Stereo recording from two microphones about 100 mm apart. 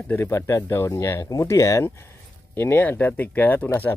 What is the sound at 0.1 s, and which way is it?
Speech, 25° left (ahead or behind).